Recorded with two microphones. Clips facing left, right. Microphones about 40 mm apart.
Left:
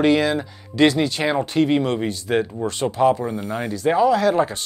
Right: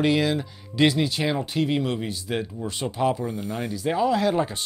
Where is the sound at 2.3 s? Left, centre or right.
Left.